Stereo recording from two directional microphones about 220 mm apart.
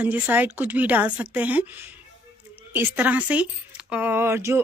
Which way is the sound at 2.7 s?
10° right (ahead or behind).